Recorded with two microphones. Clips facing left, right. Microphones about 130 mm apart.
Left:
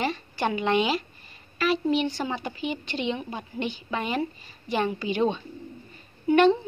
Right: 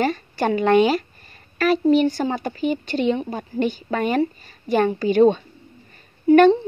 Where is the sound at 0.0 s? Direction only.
45° right (ahead or behind).